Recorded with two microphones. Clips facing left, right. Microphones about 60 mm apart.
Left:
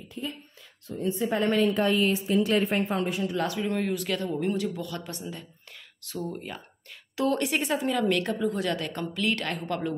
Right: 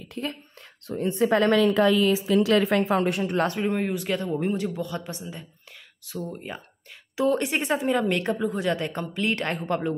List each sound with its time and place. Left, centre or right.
0.1 s a woman's voice: right
3.1 s speech: right
3.3 s a man's voice: right
3.6 s a woman's voice: right
5.3 s a sound: centre
6.1 s speech: centre
7.2 s a woman's voice: centre